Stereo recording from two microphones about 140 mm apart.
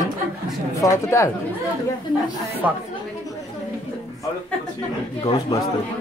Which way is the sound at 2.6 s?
10° right (ahead or behind).